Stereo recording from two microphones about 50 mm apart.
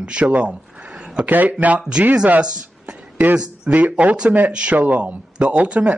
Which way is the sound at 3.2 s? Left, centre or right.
Right.